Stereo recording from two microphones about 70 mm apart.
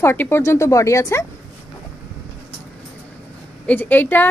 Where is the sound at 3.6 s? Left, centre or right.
Left.